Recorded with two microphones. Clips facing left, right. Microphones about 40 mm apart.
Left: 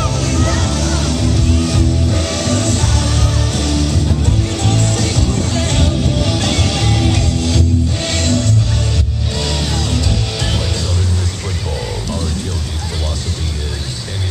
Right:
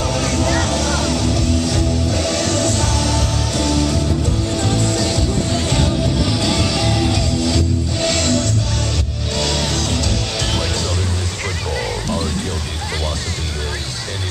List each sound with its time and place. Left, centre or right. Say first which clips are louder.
6.2 s music: left 1 dB; left
6.8 s music: left 1 dB; left
9.3 s music: right 1 dB; centre